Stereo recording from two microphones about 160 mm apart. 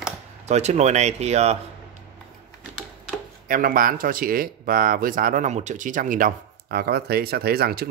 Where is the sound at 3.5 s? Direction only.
60° right (ahead or behind).